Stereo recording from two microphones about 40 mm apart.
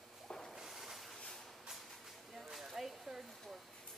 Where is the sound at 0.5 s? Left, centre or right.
Centre.